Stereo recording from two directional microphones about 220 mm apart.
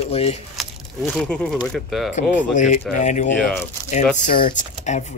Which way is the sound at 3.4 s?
5° left (ahead or behind).